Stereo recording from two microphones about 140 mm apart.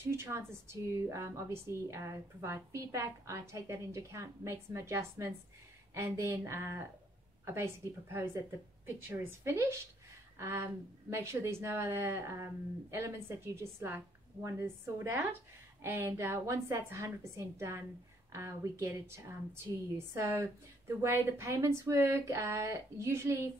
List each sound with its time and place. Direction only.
0.0 s a woman's voice: 20° right (ahead or behind)